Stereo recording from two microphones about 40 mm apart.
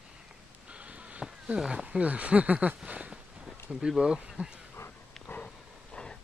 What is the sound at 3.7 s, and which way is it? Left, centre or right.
Speech, right.